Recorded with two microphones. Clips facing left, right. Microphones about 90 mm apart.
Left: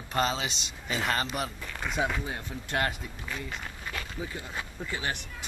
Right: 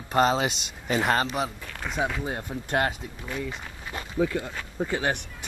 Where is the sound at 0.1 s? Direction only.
30° right (ahead or behind).